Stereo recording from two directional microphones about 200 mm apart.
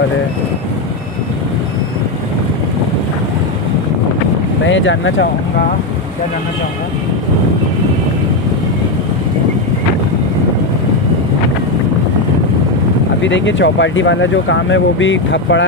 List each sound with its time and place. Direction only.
4.6 s speech: 70° left (ahead or behind)
13.2 s speech: 65° left (ahead or behind)